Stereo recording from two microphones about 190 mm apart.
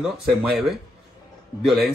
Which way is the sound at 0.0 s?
5° right (ahead or behind).